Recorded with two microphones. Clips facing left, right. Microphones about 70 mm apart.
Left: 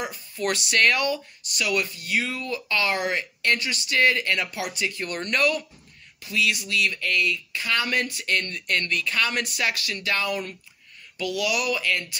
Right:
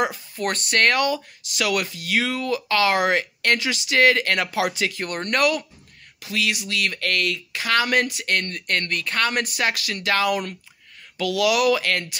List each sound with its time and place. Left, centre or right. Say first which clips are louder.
0.4 s speech: right 1 dB; right
5.1 s speech: right 2 dB; right
11.1 s speech: right 6 dB; right